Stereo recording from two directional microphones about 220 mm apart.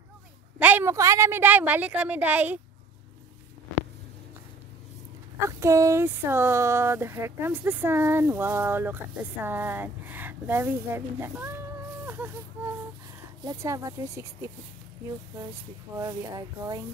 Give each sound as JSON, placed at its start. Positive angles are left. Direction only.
{"t": 0.6, "sound": "speech", "side_deg": -10}
{"t": 5.6, "sound": "speech", "side_deg": -15}
{"t": 12.1, "sound": "baby cry", "side_deg": -10}
{"t": 13.4, "sound": "speech", "side_deg": -15}